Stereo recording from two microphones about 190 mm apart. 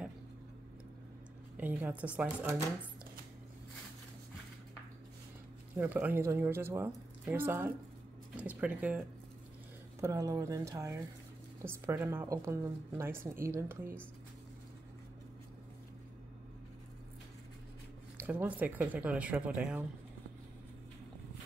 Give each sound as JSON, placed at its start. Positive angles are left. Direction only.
{"t": 1.6, "sound": "speech", "side_deg": -10}
{"t": 5.8, "sound": "speech", "side_deg": -10}
{"t": 18.2, "sound": "speech", "side_deg": -10}